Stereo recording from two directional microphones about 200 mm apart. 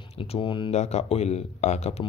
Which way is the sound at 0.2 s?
25° left (ahead or behind).